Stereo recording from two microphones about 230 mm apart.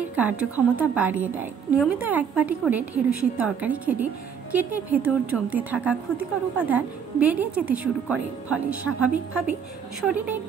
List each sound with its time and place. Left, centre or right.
0.1 s a woman's voice: centre